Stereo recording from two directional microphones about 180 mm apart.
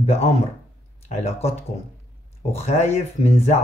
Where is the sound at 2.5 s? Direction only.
35° left (ahead or behind).